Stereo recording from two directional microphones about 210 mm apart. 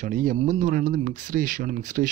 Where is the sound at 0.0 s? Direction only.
40° right (ahead or behind).